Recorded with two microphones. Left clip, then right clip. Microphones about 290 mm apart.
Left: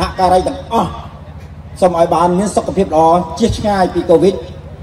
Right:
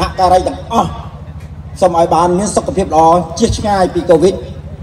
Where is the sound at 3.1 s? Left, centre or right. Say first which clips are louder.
Right 2 dB; centre.